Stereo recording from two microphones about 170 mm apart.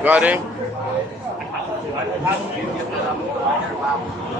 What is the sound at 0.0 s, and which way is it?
Speech, 10° right (ahead or behind).